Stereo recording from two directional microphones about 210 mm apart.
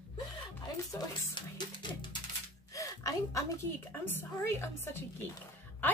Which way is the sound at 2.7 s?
15° left (ahead or behind).